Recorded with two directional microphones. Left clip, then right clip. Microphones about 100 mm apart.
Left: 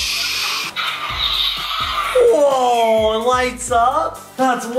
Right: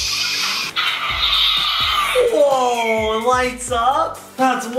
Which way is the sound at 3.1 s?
30° left (ahead or behind).